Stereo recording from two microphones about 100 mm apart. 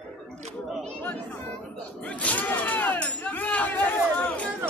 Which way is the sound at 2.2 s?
15° left (ahead or behind).